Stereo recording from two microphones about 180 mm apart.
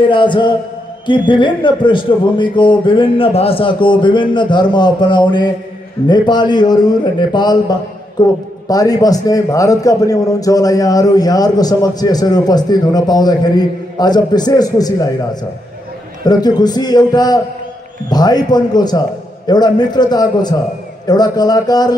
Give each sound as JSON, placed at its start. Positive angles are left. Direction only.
{"t": 0.1, "sound": "a man's voice", "side_deg": 25}
{"t": 16.3, "sound": "a man's voice", "side_deg": 20}